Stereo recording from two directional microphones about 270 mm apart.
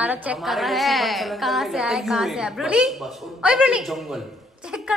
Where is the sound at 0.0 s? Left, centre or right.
Centre.